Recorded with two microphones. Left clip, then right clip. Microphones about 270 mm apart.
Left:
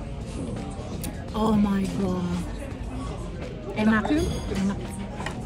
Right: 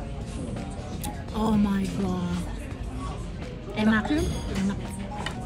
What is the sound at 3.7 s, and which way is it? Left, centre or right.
A woman's voice, centre.